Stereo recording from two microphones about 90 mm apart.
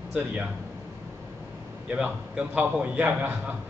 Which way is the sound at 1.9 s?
15° right (ahead or behind).